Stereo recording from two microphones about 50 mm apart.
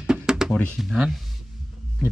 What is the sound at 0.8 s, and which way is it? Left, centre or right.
Speech, centre.